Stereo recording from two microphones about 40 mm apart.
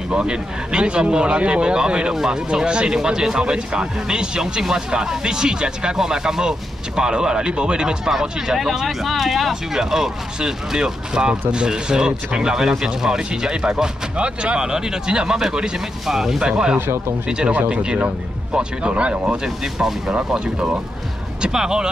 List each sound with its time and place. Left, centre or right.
0.1 s speech: right; by 9.5 s centre
9.5 s speech: centre
16.3 s speech: right
16.7 s speech: right
17.6 s speech: right
19.4 s speech: centre
20.2 s speech: right
21.4 s speech: centre